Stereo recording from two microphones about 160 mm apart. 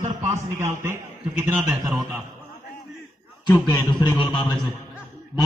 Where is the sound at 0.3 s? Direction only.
15° right (ahead or behind).